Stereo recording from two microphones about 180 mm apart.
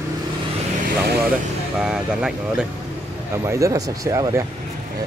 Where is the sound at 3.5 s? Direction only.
15° right (ahead or behind).